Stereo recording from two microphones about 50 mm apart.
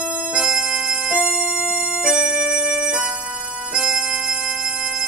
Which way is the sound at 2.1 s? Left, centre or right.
Centre.